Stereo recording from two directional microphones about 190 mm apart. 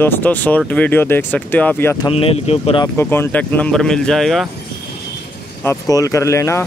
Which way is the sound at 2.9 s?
10° left (ahead or behind).